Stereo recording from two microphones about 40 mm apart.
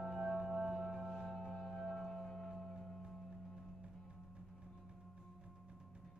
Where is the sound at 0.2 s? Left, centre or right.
Centre.